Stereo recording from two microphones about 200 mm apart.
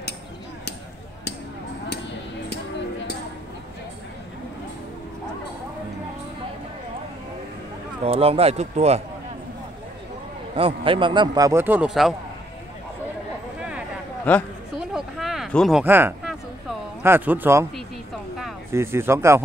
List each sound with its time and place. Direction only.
8.0 s speech: 30° right (ahead or behind)
10.5 s a man's voice: 25° right (ahead or behind); by 12.2 s centre (ahead or behind)
13.6 s a sound: 5° right (ahead or behind)
15.0 s a sound: centre (ahead or behind)
15.8 s a man's voice: 10° right (ahead or behind)
18.7 s a man's voice: 15° right (ahead or behind)